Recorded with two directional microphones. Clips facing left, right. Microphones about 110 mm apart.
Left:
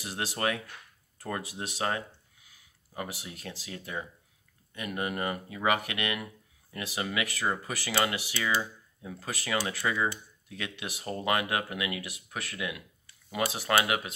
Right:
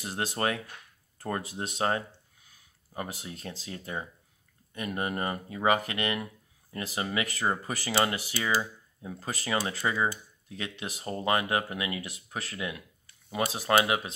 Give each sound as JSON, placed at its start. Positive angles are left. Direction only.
{"t": 0.0, "sound": "speech", "side_deg": -30}
{"t": 1.8, "sound": "speech", "side_deg": -30}